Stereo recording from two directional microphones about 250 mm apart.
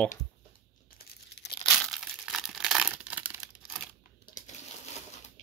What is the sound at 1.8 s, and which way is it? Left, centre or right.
Tearing, centre.